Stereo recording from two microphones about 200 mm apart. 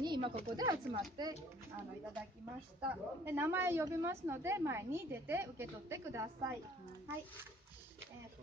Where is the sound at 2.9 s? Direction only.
10° right (ahead or behind).